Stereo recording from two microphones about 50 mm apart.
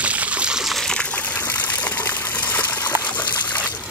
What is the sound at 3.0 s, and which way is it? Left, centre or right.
Trickle, left.